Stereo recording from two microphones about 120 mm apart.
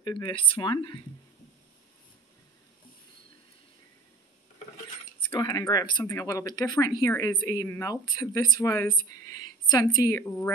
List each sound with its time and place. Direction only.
0.0 s speech: 40° left (ahead or behind)
5.4 s speech: 30° left (ahead or behind)
7.6 s speech: 15° left (ahead or behind)
7.9 s speech: 30° left (ahead or behind)